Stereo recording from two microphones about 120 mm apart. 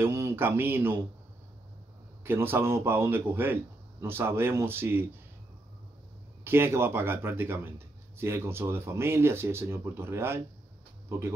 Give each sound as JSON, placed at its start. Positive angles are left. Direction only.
{"t": 0.0, "sound": "speech", "side_deg": -20}
{"t": 2.2, "sound": "speech", "side_deg": -20}
{"t": 6.4, "sound": "speech", "side_deg": -20}